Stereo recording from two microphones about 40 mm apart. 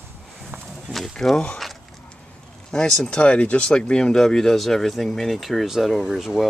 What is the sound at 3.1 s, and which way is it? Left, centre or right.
Speech, left.